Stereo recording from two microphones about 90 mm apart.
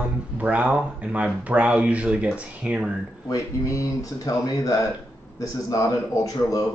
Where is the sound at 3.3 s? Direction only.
35° left (ahead or behind).